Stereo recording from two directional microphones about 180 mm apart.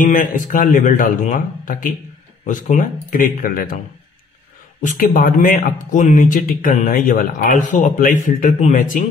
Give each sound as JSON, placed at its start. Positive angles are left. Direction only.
{"t": 0.0, "sound": "speech", "side_deg": 50}
{"t": 4.8, "sound": "speech", "side_deg": 50}